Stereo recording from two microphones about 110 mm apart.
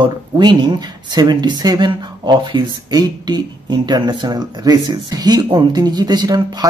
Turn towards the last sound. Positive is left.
turn(degrees=-35)  # may be behind; listen again after turning